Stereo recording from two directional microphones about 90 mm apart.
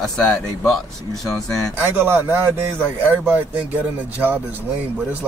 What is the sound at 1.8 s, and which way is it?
Speech, 25° right (ahead or behind).